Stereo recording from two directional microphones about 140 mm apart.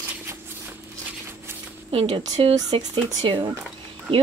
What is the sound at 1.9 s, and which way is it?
Speech, 40° right (ahead or behind).